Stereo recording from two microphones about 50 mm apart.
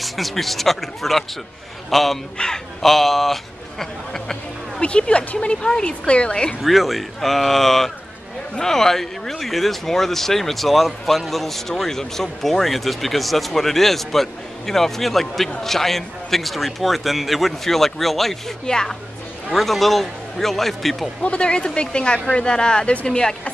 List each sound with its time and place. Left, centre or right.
0.0 s speech: centre
3.8 s a sound: centre
4.8 s speech: left
6.6 s speech: centre
21.2 s speech: left